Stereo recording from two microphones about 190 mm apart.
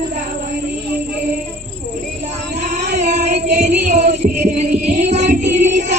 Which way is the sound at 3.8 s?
40° right (ahead or behind).